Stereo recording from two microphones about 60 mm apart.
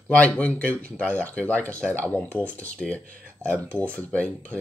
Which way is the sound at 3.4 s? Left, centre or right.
Left.